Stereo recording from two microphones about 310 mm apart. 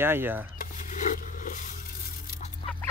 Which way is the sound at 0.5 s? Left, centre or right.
Left.